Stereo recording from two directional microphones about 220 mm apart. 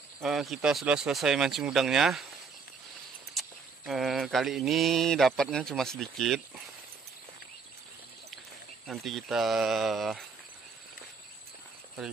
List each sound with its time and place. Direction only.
0.2 s mantra: centre (ahead or behind)
3.3 s mantra: centre (ahead or behind)
8.8 s mantra: centre (ahead or behind)